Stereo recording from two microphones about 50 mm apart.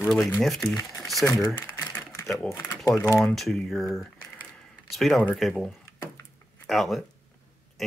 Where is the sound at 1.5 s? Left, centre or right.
Left.